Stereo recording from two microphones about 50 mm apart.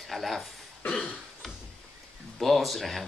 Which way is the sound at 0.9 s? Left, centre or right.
Centre.